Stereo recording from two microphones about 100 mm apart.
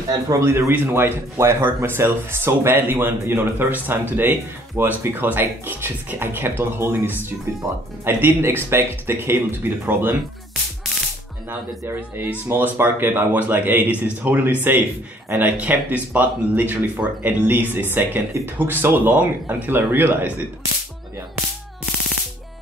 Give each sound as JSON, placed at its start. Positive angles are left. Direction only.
{"t": 0.3, "sound": "speech", "side_deg": -30}
{"t": 12.4, "sound": "a man's voice", "side_deg": -20}